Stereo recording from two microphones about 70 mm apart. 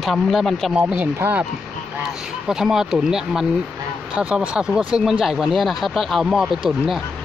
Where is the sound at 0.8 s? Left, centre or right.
Right.